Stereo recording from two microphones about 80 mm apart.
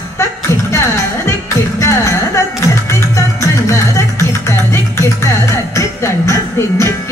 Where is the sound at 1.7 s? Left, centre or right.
Left.